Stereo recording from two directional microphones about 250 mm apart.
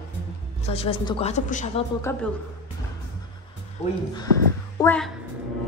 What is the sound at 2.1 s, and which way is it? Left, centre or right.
Speech, centre.